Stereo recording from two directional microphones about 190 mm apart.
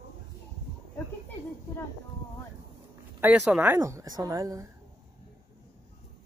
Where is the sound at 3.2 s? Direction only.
10° right (ahead or behind).